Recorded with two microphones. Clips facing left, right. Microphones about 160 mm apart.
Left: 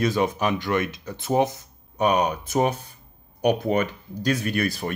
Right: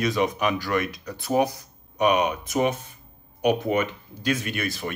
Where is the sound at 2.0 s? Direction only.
35° left (ahead or behind).